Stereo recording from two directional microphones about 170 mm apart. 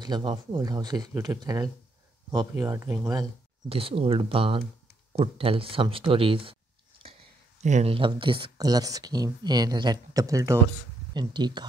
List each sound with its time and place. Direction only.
0.0 s speech: 25° right (ahead or behind)
3.6 s speech: 35° right (ahead or behind)
7.6 s speech: 40° right (ahead or behind)